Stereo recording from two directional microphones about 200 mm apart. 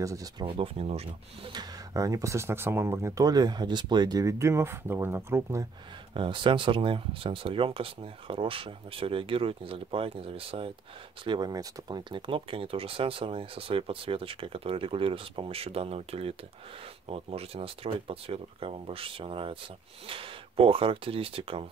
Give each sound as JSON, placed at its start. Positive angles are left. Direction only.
{"t": 0.0, "sound": "speech", "side_deg": -15}
{"t": 6.1, "sound": "speech", "side_deg": -25}